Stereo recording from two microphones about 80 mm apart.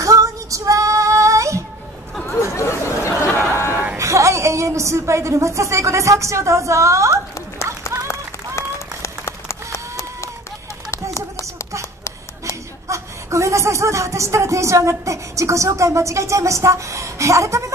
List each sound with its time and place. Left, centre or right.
0.0 s female singing: right
2.5 s chatter: left
3.7 s a sound: right
4.0 s a woman's voice: right
8.1 s applause: left
10.9 s a sound: left
12.8 s a woman's voice: right